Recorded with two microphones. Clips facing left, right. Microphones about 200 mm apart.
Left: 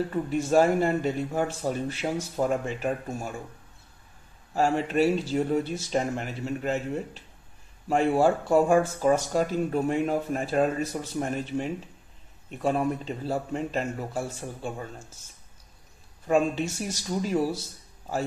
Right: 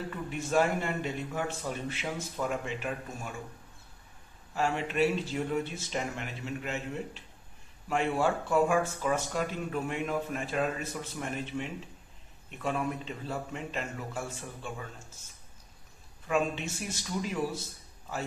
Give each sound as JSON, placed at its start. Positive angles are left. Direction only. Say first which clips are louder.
{"t": 0.1, "sound": "speech", "louder": "left 5 dB", "side_deg": 40}
{"t": 4.6, "sound": "speech", "louder": "left 5 dB", "side_deg": 40}
{"t": 16.3, "sound": "speech", "louder": "left 6 dB", "side_deg": 40}